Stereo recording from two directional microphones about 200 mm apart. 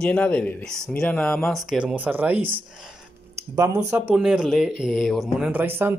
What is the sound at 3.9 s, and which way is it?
Speech, 5° right (ahead or behind).